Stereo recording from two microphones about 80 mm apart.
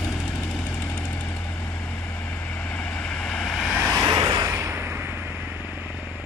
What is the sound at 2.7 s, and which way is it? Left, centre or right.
Vehicle, centre.